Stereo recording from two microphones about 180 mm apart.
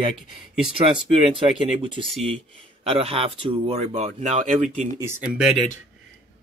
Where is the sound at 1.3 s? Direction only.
30° right (ahead or behind).